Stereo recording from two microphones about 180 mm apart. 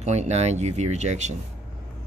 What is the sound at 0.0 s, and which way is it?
Speech, 40° right (ahead or behind).